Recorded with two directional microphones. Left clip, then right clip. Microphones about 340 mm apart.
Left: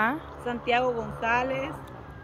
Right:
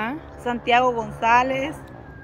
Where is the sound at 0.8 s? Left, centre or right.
Right.